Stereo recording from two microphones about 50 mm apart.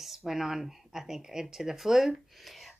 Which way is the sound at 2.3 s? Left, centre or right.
Centre.